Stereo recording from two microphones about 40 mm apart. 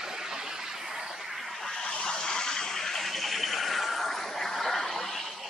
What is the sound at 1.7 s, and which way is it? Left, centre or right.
Vehicle, centre.